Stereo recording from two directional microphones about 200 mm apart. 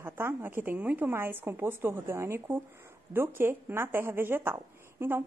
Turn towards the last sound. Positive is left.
turn(degrees=-10)  # may be behind; listen again after turning